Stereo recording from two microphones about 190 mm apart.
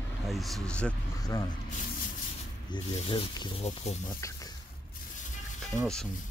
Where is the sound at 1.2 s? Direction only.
20° left (ahead or behind).